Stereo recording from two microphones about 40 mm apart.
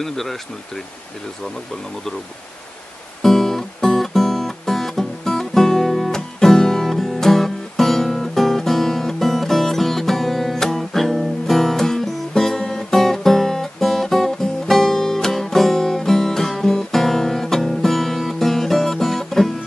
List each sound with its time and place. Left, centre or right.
0.0 s speech: centre
3.2 s music: centre